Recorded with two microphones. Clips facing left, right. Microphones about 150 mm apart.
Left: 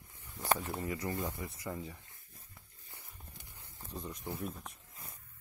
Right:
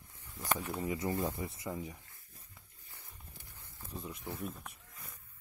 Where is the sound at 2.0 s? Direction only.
20° left (ahead or behind).